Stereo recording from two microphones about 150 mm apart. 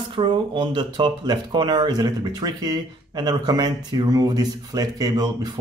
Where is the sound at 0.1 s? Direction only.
35° right (ahead or behind).